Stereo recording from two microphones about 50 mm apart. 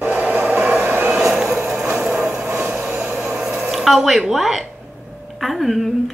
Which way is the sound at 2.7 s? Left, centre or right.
Right.